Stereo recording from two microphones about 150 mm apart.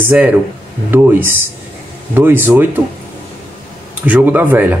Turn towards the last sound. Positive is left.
turn(degrees=-10)  # may be behind; listen again after turning